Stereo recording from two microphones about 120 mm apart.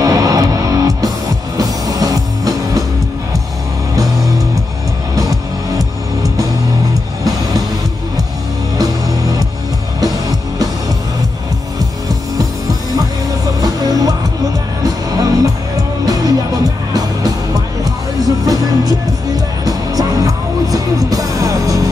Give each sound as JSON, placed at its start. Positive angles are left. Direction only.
{"t": 0.0, "sound": "music", "side_deg": -30}
{"t": 5.1, "sound": "music", "side_deg": -30}
{"t": 13.6, "sound": "music", "side_deg": -30}
{"t": 18.4, "sound": "music", "side_deg": -30}